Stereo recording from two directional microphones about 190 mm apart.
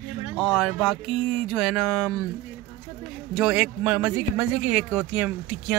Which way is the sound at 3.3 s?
5° right (ahead or behind).